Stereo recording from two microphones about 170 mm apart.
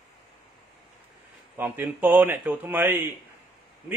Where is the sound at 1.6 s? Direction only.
10° right (ahead or behind).